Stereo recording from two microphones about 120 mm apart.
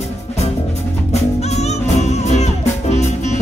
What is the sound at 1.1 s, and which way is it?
Music, 65° left (ahead or behind).